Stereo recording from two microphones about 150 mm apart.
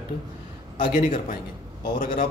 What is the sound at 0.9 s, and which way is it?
Speech, 70° left (ahead or behind).